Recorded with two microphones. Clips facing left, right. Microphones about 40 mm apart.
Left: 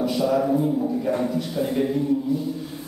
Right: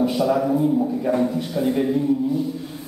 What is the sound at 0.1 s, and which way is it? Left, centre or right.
A man's voice, centre.